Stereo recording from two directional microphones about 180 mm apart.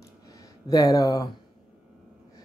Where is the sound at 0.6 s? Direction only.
20° left (ahead or behind).